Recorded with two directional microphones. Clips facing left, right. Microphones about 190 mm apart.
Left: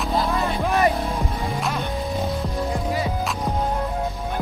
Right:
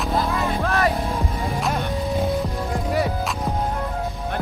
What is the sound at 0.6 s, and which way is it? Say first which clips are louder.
Vehicle: left 3 dB; 15° left (ahead or behind).